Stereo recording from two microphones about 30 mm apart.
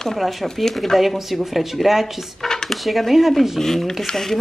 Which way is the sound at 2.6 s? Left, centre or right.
Centre.